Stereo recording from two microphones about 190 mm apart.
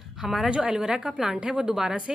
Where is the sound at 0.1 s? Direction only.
Centre (ahead or behind).